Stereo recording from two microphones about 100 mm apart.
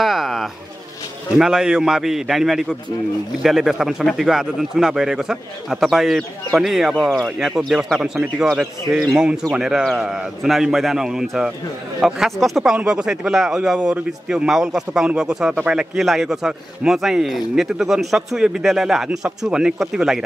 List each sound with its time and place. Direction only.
0.0 s bird: centre (ahead or behind)
1.4 s a man's voice: 5° right (ahead or behind)